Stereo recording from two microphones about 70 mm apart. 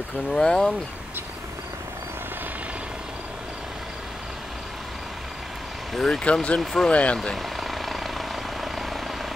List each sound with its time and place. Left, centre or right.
0.3 s speech: centre
5.9 s speech: centre
6.2 s speech: centre
6.6 s speech: centre
6.9 s speech: centre
7.6 s vehicle: centre